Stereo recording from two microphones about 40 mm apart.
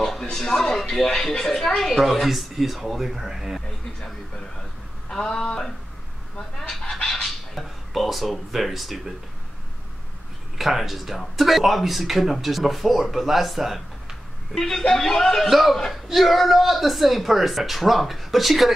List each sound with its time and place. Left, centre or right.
0.0 s speech: centre
5.1 s speech: centre
6.7 s fowl: centre
7.1 s a sound: centre
10.6 s speech: centre
14.5 s speech: centre
15.5 s speech: centre